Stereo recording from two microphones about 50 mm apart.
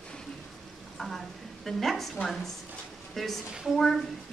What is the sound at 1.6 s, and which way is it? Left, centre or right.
Speech, centre.